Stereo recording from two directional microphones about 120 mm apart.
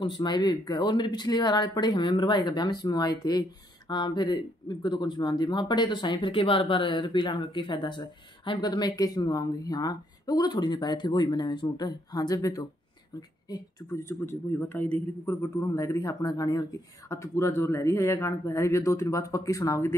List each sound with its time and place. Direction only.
0.0 s speech: 35° left (ahead or behind)
13.8 s speech: 20° left (ahead or behind)